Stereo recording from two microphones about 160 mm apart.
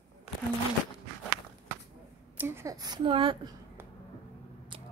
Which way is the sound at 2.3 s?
15° right (ahead or behind).